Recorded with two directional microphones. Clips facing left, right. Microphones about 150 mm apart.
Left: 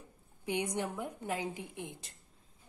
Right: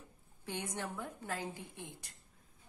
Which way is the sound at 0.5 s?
15° left (ahead or behind).